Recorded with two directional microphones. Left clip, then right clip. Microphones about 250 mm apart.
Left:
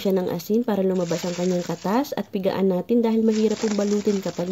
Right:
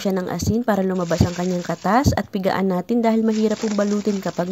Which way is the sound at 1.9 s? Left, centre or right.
Centre.